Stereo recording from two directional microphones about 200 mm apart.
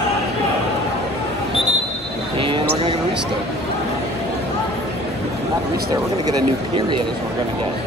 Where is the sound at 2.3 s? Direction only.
25° right (ahead or behind).